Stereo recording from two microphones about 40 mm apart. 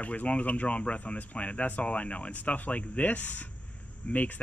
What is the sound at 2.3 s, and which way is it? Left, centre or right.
Speech, left.